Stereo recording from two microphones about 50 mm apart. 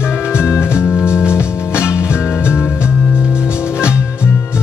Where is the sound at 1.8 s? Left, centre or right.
Left.